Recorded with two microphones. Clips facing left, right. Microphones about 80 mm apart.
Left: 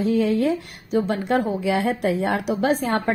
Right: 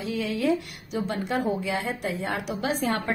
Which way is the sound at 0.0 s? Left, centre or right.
Left.